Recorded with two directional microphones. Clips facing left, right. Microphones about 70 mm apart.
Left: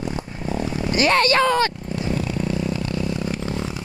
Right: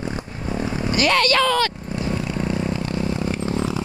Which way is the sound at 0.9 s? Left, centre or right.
Left.